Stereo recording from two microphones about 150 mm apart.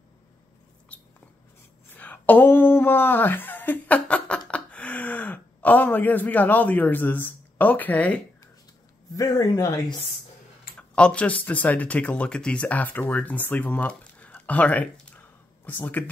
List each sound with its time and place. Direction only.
1.9 s a sound: 10° left (ahead or behind)
4.5 s speech: 10° left (ahead or behind)
9.1 s speech: 25° left (ahead or behind)
10.8 s speech: 5° left (ahead or behind)